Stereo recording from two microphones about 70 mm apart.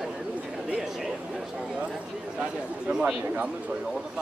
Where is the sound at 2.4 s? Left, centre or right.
Centre.